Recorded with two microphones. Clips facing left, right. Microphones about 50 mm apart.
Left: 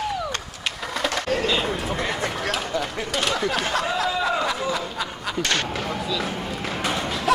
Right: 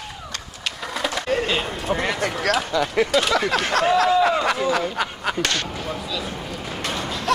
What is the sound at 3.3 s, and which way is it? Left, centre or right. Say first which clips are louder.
Speech: right 3 dB; right.